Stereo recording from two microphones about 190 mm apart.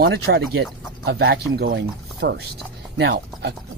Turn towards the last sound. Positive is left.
turn(degrees=-60)  # may be behind; listen again after turning